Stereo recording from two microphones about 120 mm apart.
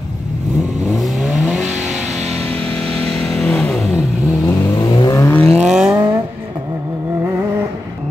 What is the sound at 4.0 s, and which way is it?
Vehicle, 30° left (ahead or behind).